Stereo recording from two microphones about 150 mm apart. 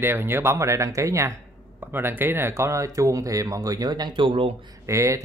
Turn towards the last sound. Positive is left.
turn(degrees=-20)  # may be behind; listen again after turning